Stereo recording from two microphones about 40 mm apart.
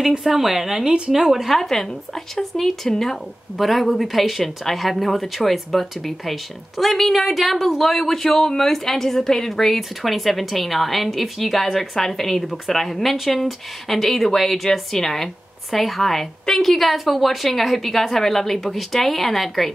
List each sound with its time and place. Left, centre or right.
0.2 s a woman's voice: centre
0.8 s a woman's voice: right
1.1 s a woman's voice: centre